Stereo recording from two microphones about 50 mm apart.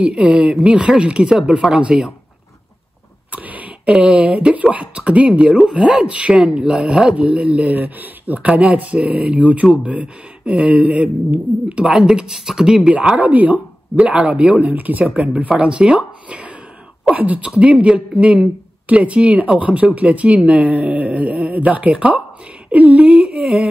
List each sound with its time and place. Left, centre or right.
0.0 s speech: right
3.3 s a sound: right
4.6 s speech: right
7.7 s speech: right
8.5 s speech: right
10.4 s a sound: centre
10.7 s speech: right
11.9 s speech: centre
13.1 s speech: right
16.3 s plop: right
17.1 s speech: right
23.0 s humming: right
23.4 s humming: centre